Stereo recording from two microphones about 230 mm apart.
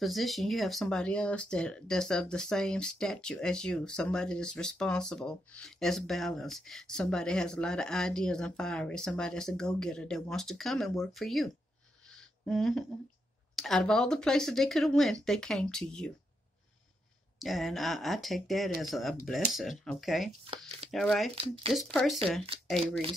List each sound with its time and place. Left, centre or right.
0.0 s speech: centre
17.4 s speech: centre
20.4 s a sound: right
20.9 s speech: centre